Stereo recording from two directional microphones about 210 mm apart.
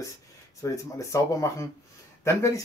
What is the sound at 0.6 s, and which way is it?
Speech, 15° left (ahead or behind).